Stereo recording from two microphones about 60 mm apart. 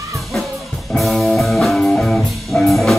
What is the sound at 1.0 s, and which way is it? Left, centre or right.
Music, centre.